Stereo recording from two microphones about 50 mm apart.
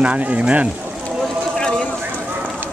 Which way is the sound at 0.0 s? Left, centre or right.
Right.